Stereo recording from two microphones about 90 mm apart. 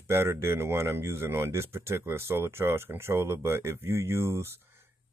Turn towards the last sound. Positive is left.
turn(degrees=-30)  # may be behind; listen again after turning